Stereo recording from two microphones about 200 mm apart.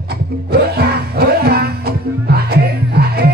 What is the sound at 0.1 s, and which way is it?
Music, 50° right (ahead or behind).